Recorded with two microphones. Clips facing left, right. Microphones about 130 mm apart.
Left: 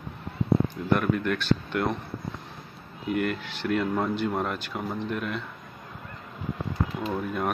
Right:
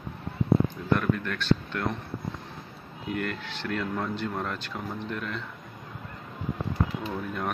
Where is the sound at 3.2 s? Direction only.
10° left (ahead or behind).